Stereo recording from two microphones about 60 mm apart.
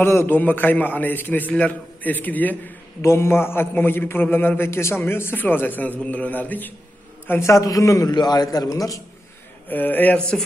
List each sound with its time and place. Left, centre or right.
0.0 s a man's voice: left
0.4 s a man's voice: left
3.0 s a man's voice: left
4.6 s a man's voice: left
7.2 s a man's voice: left
7.5 s a man's voice: left
9.7 s a man's voice: left